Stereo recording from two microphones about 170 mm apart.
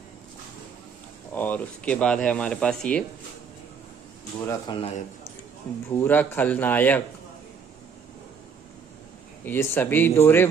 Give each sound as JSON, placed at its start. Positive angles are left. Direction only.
{"t": 1.3, "sound": "speech", "side_deg": 10}
{"t": 4.7, "sound": "a man's voice", "side_deg": 35}
{"t": 5.9, "sound": "speech", "side_deg": 10}
{"t": 9.4, "sound": "speech", "side_deg": 10}